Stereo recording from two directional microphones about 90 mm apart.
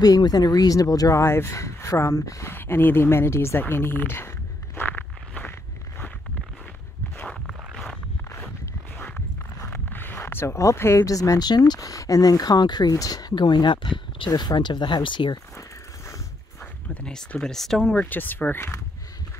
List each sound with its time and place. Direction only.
0.0 s speech: 45° left (ahead or behind); by 4.3 s 25° left (ahead or behind)
4.7 s walk: 20° left (ahead or behind)
7.4 s a sound: centre (ahead or behind)
8.9 s a sound: 20° left (ahead or behind)
9.7 s speech: 20° left (ahead or behind); by 13.3 s 40° left (ahead or behind)
13.3 s speech: 60° left (ahead or behind)
16.9 s speech: 10° left (ahead or behind)
18.0 s speech: 20° left (ahead or behind)